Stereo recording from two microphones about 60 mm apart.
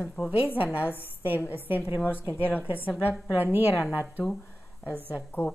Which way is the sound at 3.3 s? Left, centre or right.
Right.